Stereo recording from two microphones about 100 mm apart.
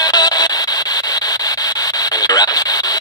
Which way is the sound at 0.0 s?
40° left (ahead or behind).